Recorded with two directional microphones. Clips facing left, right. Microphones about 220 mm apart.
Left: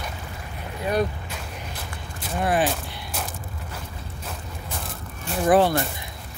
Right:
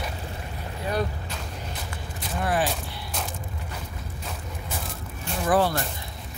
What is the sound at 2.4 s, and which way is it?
Fusillade, 20° left (ahead or behind).